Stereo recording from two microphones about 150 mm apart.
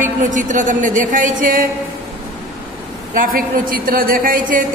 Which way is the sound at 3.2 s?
70° right (ahead or behind).